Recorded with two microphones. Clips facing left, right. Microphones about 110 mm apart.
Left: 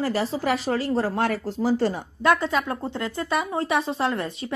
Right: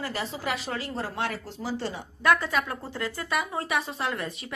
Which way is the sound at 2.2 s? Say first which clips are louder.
Left 3 dB; 25° left (ahead or behind).